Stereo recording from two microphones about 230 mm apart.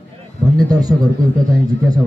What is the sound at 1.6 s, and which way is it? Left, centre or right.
Speech, centre.